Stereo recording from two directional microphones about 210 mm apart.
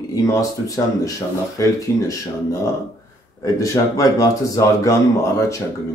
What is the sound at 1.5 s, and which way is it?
Speech, 15° left (ahead or behind).